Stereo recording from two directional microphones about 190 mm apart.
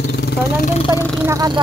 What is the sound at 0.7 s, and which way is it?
Speech, 25° left (ahead or behind).